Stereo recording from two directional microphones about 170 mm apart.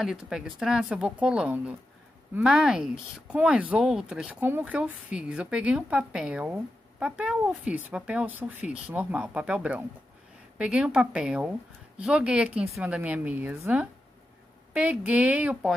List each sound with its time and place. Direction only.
0.0 s speech: 5° right (ahead or behind)